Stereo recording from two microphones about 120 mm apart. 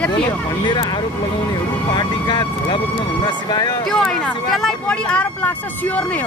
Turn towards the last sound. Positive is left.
turn(degrees=15)  # may be behind; listen again after turning